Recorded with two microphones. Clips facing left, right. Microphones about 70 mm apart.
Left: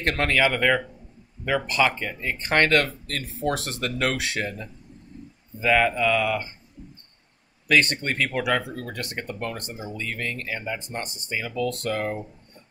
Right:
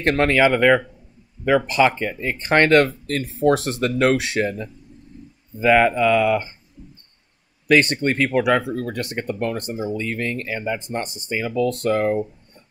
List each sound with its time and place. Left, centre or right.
0.0 s speech: right
5.6 s speech: right
7.6 s speech: right
10.6 s speech: right
11.0 s speech: right